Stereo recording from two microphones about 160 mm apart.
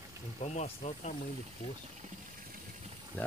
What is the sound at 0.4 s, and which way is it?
Speech, 45° left (ahead or behind).